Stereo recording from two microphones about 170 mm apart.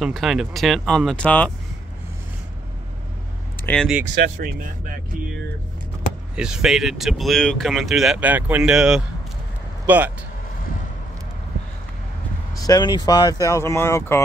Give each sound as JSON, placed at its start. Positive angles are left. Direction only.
{"t": 0.0, "sound": "speech", "side_deg": 0}
{"t": 3.6, "sound": "speech", "side_deg": 5}
{"t": 4.0, "sound": "speech", "side_deg": -85}
{"t": 6.3, "sound": "speech", "side_deg": -5}
{"t": 12.5, "sound": "speech", "side_deg": 20}